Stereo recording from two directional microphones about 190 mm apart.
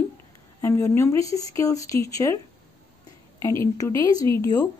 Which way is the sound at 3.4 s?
15° left (ahead or behind).